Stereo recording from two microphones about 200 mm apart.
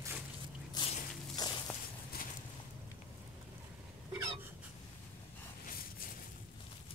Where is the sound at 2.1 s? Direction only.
50° left (ahead or behind).